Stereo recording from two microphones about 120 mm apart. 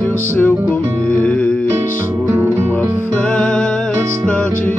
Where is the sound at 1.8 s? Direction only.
30° right (ahead or behind).